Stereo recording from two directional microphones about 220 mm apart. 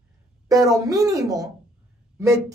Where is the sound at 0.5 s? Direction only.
15° right (ahead or behind).